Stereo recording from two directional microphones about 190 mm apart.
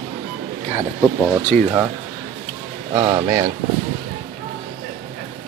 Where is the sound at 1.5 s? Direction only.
40° right (ahead or behind).